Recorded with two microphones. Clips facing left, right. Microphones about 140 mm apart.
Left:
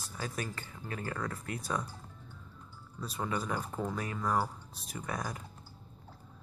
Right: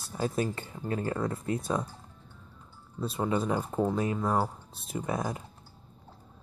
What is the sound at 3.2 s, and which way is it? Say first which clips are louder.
Speech: right 6 dB; 25° right (ahead or behind).